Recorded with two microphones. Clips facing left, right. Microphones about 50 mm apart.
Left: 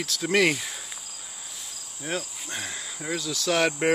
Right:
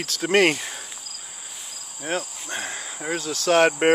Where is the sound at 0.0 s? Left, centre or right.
Right.